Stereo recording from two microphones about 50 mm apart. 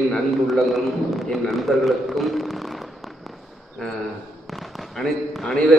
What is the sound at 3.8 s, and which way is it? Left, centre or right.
Speech, centre.